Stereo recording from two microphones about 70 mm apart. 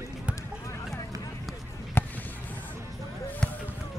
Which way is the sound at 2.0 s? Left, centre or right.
Left.